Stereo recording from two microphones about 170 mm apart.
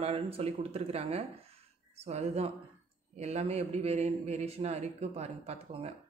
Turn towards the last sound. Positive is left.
turn(degrees=-35)  # may be behind; listen again after turning